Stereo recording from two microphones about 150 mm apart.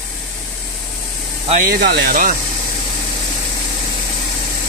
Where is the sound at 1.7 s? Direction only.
90° right.